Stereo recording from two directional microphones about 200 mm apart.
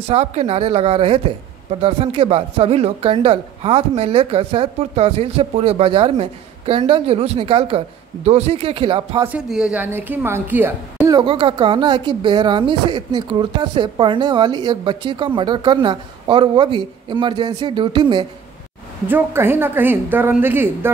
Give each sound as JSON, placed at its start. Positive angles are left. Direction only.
{"t": 0.1, "sound": "speech", "side_deg": -30}
{"t": 9.2, "sound": "a woman's voice", "side_deg": -5}
{"t": 11.1, "sound": "speech", "side_deg": -20}
{"t": 19.0, "sound": "a woman's voice", "side_deg": -10}